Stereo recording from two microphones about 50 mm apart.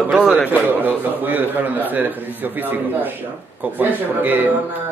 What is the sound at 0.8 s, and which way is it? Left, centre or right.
Speech, right.